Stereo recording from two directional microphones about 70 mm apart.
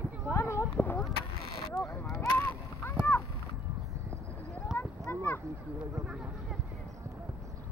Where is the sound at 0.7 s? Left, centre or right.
Left.